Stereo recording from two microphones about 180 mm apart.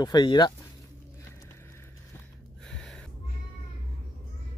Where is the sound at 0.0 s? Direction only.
25° left (ahead or behind).